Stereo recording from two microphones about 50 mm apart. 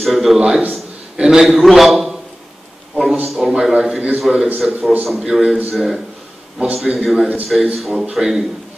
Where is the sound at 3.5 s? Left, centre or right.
Centre.